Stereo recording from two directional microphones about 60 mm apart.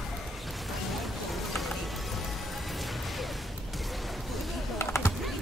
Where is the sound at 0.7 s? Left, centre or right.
Centre.